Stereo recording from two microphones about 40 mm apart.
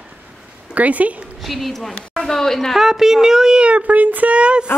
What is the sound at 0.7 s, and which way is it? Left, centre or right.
Speech, right.